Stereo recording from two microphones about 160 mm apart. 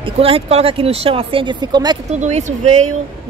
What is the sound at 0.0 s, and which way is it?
Speech, 35° right (ahead or behind).